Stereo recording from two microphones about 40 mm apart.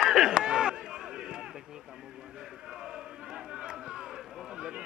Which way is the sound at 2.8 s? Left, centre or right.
Centre.